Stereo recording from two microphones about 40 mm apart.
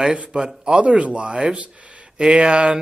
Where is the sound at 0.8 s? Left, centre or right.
Right.